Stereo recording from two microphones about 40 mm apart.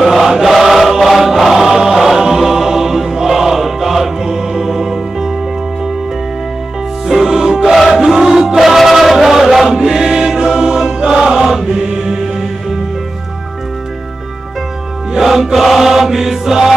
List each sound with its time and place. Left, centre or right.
0.0 s choir: centre
1.8 s music: centre
7.1 s music: centre
7.9 s chant: centre
11.1 s music: centre
15.1 s music: centre
15.6 s chant: centre